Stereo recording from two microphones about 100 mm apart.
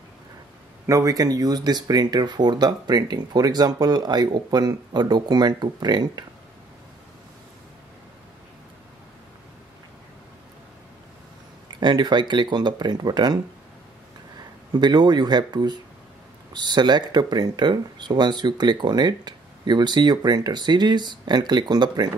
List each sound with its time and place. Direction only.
0.8 s speech: 35° right (ahead or behind)
11.8 s speech: 50° right (ahead or behind)
14.7 s speech: 45° right (ahead or behind)